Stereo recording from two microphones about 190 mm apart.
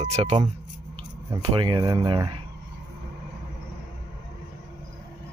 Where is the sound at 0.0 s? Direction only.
35° right (ahead or behind).